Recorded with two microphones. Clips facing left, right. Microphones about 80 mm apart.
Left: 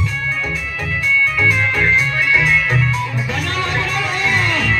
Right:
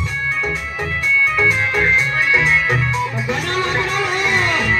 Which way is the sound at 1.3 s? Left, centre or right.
Right.